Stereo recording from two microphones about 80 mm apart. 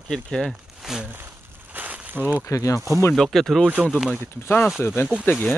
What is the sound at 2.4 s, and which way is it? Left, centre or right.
Speech, left.